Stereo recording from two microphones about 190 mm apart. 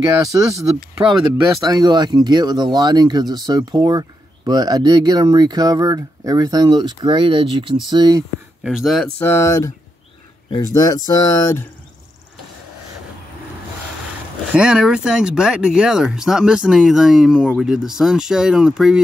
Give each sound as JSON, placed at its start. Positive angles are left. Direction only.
{"t": 0.0, "sound": "speech", "side_deg": -20}
{"t": 8.6, "sound": "speech", "side_deg": 0}
{"t": 9.2, "sound": "speech", "side_deg": 15}
{"t": 14.5, "sound": "speech", "side_deg": -5}